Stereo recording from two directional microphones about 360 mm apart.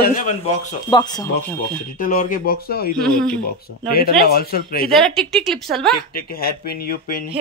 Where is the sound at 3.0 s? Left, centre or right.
Centre.